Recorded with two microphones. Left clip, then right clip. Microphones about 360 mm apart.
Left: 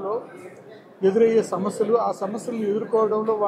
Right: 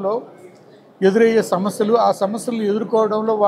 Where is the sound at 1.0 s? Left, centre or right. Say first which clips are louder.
Right 4 dB; right.